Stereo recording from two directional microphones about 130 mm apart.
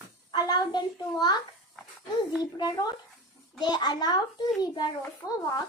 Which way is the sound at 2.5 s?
35° left (ahead or behind).